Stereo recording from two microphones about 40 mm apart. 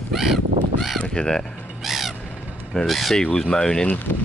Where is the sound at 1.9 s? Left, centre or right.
Centre.